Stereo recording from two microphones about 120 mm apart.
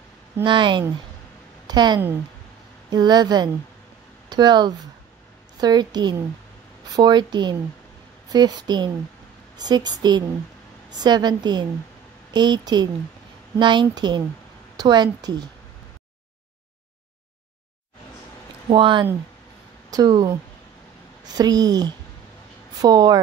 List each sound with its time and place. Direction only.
0.4 s a woman's voice: 40° right (ahead or behind)
18.7 s a woman's voice: 40° right (ahead or behind)